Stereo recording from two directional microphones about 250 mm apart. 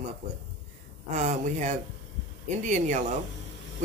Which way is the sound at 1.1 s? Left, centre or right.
Right.